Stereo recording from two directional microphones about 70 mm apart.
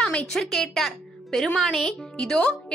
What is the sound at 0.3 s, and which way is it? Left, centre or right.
A woman's voice, centre.